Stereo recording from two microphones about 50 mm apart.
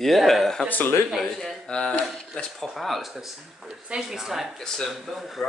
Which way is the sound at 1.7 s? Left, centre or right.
Centre.